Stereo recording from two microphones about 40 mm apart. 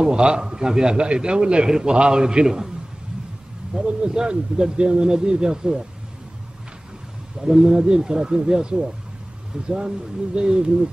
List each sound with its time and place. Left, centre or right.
0.0 s a man's voice: right
3.7 s a man's voice: right
7.4 s a man's voice: centre